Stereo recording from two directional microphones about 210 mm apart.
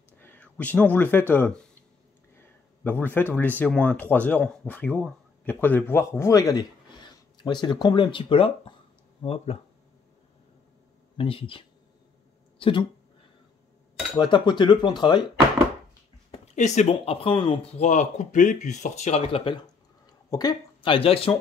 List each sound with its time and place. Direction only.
0.2 s speech: 10° left (ahead or behind); by 9.6 s 30° left (ahead or behind)
11.1 s speech: 25° left (ahead or behind)
14.1 s speech: 20° left (ahead or behind)
16.3 s speech: 35° left (ahead or behind)